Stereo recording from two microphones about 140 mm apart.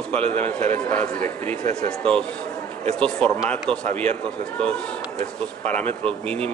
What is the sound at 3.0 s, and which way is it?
Speech, 5° left (ahead or behind).